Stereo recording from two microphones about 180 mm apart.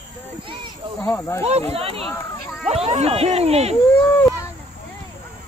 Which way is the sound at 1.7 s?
30° right (ahead or behind).